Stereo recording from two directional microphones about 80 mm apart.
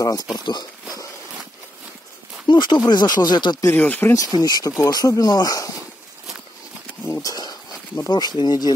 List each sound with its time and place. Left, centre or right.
0.0 s speech: left
2.4 s speech: left
2.8 s speech: left
3.7 s speech: left
4.1 s speech: left
7.1 s a sound: left
8.1 s speech: left